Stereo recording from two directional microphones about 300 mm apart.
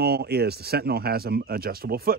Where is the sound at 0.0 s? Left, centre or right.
Right.